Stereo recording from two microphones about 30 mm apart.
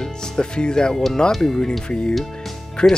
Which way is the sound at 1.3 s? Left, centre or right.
Centre.